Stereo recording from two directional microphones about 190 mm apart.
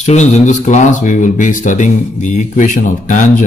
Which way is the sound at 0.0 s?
40° left (ahead or behind).